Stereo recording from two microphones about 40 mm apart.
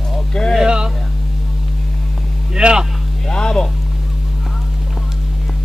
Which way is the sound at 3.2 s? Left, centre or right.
Centre.